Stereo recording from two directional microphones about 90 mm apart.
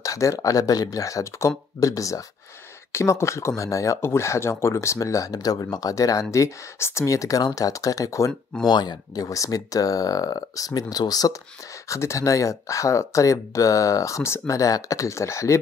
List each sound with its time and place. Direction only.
0.0 s speech: 35° left (ahead or behind)
8.6 s speech: 50° left (ahead or behind)
11.9 s speech: 35° left (ahead or behind)